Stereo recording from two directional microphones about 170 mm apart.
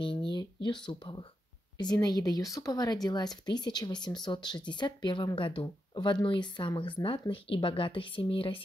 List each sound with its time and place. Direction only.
0.0 s speech: 30° left (ahead or behind)